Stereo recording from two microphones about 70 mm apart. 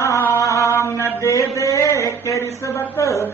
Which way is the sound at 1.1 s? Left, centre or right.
Left.